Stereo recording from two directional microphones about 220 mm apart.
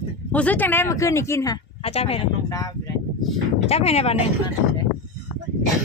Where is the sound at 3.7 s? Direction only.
30° left (ahead or behind).